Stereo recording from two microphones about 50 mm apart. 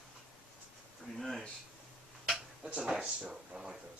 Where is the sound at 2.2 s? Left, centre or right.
Centre.